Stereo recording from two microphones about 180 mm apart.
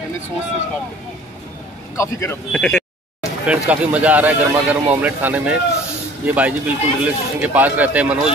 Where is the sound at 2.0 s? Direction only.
15° left (ahead or behind).